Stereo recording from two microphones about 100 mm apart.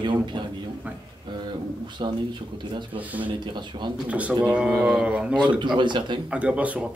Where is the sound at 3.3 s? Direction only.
50° right (ahead or behind).